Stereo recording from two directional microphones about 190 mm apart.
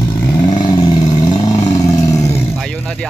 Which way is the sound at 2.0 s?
15° left (ahead or behind).